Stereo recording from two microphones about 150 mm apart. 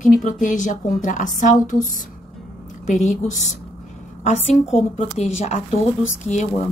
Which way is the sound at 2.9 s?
55° left (ahead or behind).